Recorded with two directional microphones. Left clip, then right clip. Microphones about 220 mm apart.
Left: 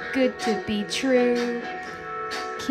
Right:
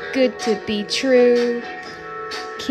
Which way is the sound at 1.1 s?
35° left (ahead or behind).